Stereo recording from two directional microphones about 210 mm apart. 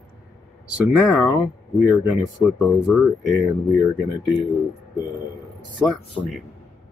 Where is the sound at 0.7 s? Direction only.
5° right (ahead or behind).